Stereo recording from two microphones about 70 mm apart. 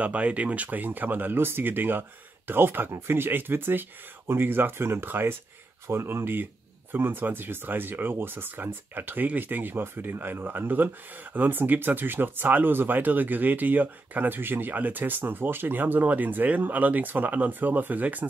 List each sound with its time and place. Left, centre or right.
0.0 s speech: centre